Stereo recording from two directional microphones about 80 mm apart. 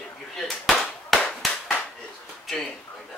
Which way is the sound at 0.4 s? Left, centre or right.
Centre.